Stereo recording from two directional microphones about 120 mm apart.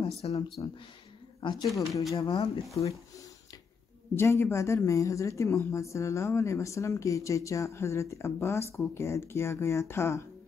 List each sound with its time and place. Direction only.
0.2 s speech: 50° left (ahead or behind)
1.4 s speech: 40° left (ahead or behind)
2.8 s speech: 45° left (ahead or behind)
4.1 s a woman's voice: 20° left (ahead or behind)